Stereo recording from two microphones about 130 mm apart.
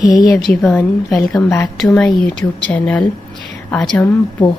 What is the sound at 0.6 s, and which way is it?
Speech, 15° left (ahead or behind).